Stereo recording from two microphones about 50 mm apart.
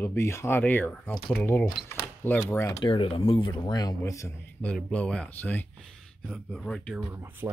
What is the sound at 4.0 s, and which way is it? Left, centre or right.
Speech, left.